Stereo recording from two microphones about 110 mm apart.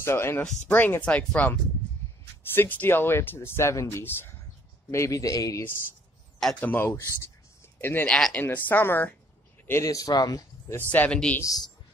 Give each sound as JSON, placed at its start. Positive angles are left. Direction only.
{"t": 0.0, "sound": "speech", "side_deg": 20}
{"t": 6.6, "sound": "speech", "side_deg": 20}
{"t": 9.7, "sound": "speech", "side_deg": 30}
{"t": 10.9, "sound": "speech", "side_deg": 10}
{"t": 11.4, "sound": "speech", "side_deg": 35}